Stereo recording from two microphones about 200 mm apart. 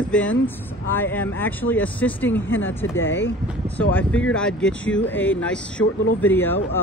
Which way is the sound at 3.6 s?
10° left (ahead or behind).